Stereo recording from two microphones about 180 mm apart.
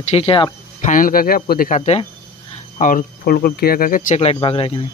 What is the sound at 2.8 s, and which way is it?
Speech, 50° left (ahead or behind).